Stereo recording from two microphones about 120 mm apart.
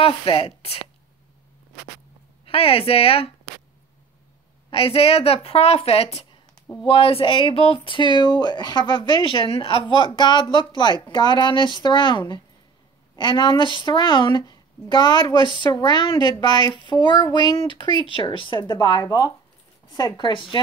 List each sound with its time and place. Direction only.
0.0 s speech: 50° left (ahead or behind)
2.4 s speech: 50° left (ahead or behind)
4.6 s a woman's voice: 55° left (ahead or behind)